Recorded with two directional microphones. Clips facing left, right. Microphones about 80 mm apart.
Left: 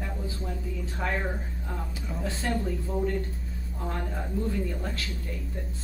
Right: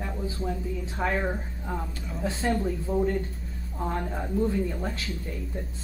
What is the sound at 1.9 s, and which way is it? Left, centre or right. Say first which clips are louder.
Speech: even; centre.